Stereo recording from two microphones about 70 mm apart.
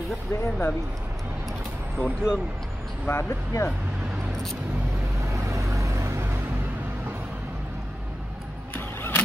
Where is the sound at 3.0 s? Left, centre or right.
Left.